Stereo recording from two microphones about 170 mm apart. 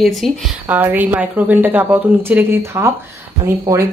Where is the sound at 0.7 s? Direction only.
10° right (ahead or behind).